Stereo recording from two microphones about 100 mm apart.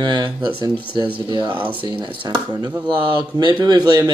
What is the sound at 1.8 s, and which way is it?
Speech, 60° right (ahead or behind).